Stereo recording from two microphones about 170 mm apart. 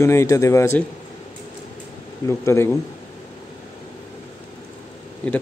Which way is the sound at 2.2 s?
15° left (ahead or behind).